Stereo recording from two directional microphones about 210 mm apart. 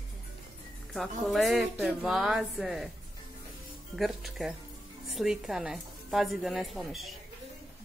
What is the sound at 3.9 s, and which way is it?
A woman's voice, centre (ahead or behind).